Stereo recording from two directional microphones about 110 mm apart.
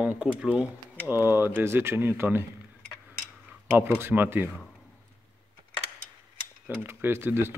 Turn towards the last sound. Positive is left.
turn(degrees=-20)  # may be behind; listen again after turning